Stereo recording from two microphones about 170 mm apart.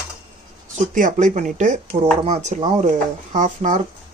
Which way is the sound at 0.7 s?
50° right (ahead or behind).